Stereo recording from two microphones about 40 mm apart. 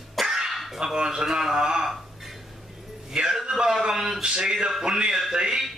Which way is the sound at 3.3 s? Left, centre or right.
Centre.